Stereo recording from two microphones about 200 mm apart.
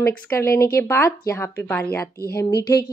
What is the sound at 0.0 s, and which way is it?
Speech, 15° left (ahead or behind).